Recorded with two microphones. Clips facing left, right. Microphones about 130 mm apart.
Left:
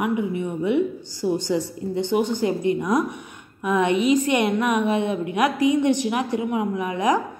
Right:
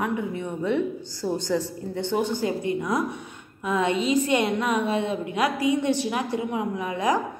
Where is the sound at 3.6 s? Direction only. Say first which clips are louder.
Left 4 dB; 15° left (ahead or behind).